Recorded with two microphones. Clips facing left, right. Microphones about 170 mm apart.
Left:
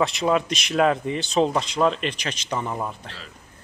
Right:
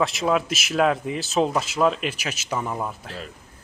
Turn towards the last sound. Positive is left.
turn(degrees=0)  # may be behind; listen again after turning